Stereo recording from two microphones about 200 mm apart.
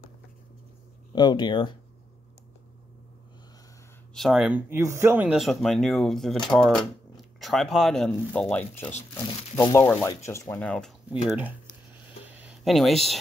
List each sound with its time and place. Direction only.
1.1 s speech: 20° left (ahead or behind)
4.1 s speech: centre (ahead or behind)
9.1 s speech: 20° left (ahead or behind)
11.2 s speech: 10° right (ahead or behind)
11.9 s a sound: 10° right (ahead or behind)